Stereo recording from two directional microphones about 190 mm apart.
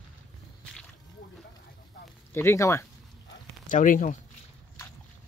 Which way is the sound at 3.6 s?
45° left (ahead or behind).